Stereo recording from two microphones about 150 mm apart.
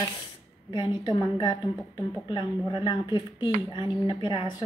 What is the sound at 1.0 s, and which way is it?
A woman's voice, 25° left (ahead or behind).